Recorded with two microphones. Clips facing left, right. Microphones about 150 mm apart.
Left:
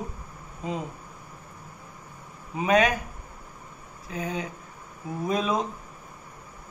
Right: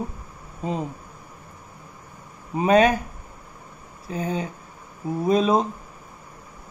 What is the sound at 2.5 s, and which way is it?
Speech, 35° right (ahead or behind).